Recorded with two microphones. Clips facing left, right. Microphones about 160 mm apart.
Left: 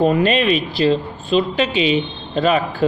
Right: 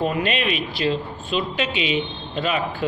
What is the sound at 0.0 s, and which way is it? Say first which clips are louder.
A woman's voice: left 7 dB; 35° left (ahead or behind).